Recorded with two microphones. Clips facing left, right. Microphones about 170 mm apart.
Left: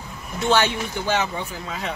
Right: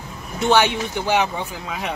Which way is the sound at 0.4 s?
15° right (ahead or behind).